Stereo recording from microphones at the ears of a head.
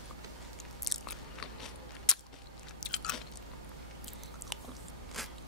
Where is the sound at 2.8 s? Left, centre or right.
Left.